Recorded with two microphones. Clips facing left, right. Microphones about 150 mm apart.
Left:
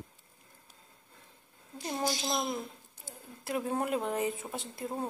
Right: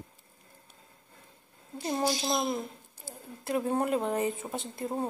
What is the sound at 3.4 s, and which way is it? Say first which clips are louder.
A woman's voice: right 4 dB; centre (ahead or behind).